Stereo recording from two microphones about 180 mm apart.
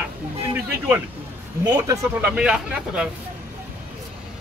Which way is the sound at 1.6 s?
20° right (ahead or behind).